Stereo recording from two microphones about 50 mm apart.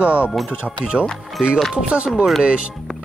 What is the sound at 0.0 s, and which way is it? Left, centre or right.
Speech, right.